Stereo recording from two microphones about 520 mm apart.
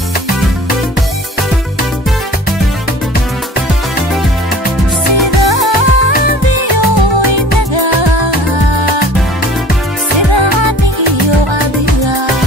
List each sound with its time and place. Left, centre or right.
5.5 s music: right
7.7 s music: right